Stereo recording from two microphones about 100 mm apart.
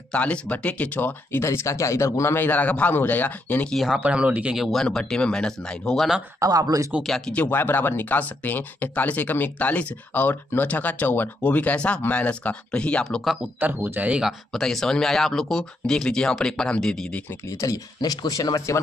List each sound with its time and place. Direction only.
0.1 s speech: 15° left (ahead or behind)
3.7 s speech: 5° right (ahead or behind)
6.4 s speech: 35° right (ahead or behind)
7.0 s speech: 5° left (ahead or behind)
7.4 s speech: 20° left (ahead or behind); by 13.4 s centre (ahead or behind)
13.6 s speech: 20° right (ahead or behind)
14.5 s speech: 5° left (ahead or behind)
17.5 s speech: 35° left (ahead or behind)